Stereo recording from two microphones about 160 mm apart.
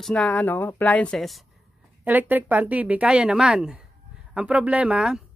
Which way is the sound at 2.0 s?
10° right (ahead or behind).